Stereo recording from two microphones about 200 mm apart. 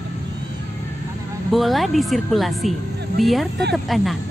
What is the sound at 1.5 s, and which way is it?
Speech, centre (ahead or behind).